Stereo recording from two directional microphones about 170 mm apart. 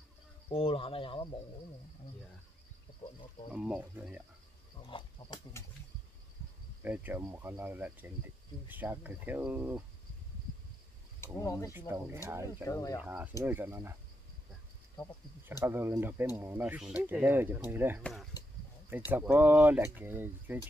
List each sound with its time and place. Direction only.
0.5 s speech: 30° left (ahead or behind)
3.5 s speech: 5° right (ahead or behind)
4.8 s speech: 25° left (ahead or behind)
6.8 s speech: 10° right (ahead or behind)
11.3 s speech: 15° left (ahead or behind)
11.9 s speech: 15° right (ahead or behind)
12.6 s speech: 20° left (ahead or behind)
13.0 s speech: 10° right (ahead or behind)
15.4 s speech: 15° right (ahead or behind)
18.0 s speech: centre (ahead or behind)
18.9 s speech: 10° right (ahead or behind)